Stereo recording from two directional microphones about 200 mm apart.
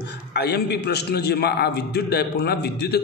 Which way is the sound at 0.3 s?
55° left (ahead or behind).